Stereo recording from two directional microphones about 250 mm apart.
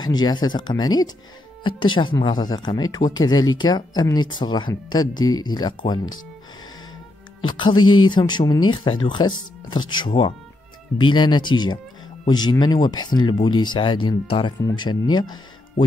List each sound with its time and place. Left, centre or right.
0.0 s speech: centre
7.4 s speech: centre
7.7 s music: left
8.1 s speech: centre